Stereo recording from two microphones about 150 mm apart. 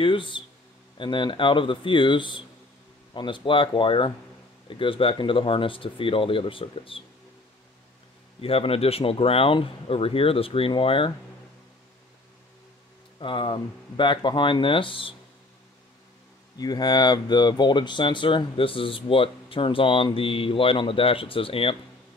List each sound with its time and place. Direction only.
0.0 s speech: 35° left (ahead or behind)
8.4 s speech: 40° left (ahead or behind)
13.2 s speech: 35° left (ahead or behind)
16.5 s speech: 25° left (ahead or behind)